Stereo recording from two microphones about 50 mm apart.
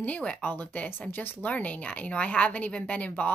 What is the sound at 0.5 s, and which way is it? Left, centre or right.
A woman's voice, left.